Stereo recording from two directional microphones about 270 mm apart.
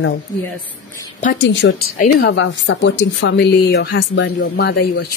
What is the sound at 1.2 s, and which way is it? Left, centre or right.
Speech, left.